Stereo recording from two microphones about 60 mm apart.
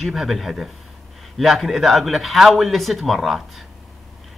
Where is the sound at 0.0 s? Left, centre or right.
Centre.